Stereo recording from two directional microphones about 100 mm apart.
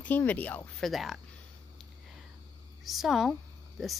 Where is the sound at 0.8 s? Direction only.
Centre (ahead or behind).